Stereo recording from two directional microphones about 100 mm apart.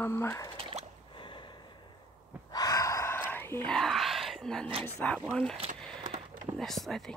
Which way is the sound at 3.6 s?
5° left (ahead or behind).